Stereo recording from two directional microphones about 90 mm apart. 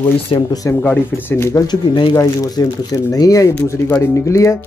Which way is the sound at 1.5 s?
50° left (ahead or behind).